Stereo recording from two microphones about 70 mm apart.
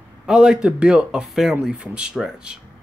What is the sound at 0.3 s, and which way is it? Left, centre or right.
Speech, centre.